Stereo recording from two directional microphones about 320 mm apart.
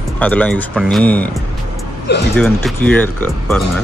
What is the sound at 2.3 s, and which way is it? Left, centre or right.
Speech, centre.